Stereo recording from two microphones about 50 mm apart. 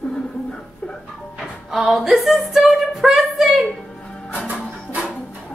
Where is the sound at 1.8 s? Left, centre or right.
Centre.